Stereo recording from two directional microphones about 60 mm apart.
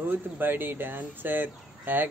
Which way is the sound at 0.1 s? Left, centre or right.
Right.